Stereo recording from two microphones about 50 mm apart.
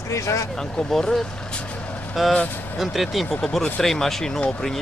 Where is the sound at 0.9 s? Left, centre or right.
Centre.